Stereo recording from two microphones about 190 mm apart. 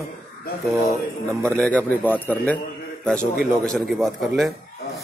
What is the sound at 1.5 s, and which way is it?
A man's voice, 5° left (ahead or behind).